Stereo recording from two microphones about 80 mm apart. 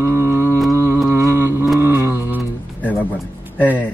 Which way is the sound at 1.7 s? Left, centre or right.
Right.